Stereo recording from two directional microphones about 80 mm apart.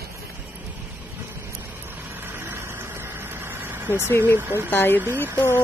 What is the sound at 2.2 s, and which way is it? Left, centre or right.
Vehicle, right.